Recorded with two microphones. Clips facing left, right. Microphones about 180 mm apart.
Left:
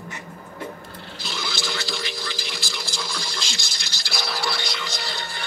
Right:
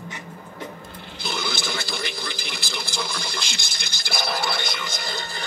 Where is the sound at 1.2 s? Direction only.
55° right (ahead or behind).